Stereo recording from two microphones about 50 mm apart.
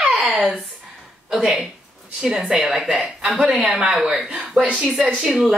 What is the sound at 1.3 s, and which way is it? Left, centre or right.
A woman's voice, centre.